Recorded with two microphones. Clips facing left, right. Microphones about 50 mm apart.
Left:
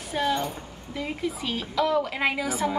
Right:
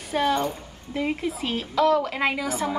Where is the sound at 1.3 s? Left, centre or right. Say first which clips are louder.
Right 2 dB; centre.